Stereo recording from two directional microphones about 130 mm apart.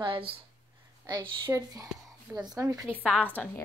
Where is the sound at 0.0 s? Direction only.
40° right (ahead or behind).